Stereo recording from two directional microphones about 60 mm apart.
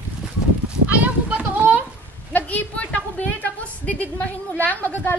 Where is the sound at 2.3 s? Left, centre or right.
Left.